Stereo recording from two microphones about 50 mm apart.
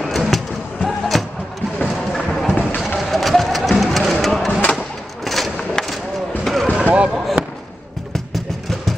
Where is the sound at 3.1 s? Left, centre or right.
Centre.